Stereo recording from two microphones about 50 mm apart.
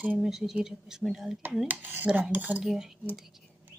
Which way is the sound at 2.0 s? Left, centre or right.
Right.